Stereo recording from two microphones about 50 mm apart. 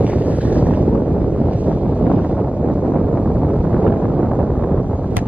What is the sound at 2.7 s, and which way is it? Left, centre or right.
Wind noise, centre.